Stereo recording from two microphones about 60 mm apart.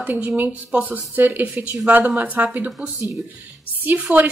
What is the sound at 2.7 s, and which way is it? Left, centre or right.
Speech, centre.